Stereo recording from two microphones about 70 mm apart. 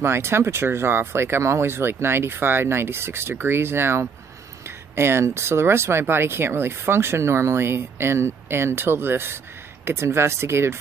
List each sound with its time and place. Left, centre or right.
0.0 s speech: right